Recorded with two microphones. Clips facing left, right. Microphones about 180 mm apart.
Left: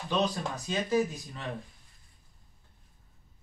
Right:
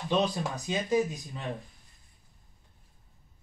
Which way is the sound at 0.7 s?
15° right (ahead or behind).